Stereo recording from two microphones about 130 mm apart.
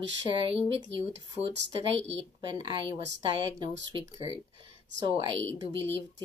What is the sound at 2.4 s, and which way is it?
Speech, 40° right (ahead or behind).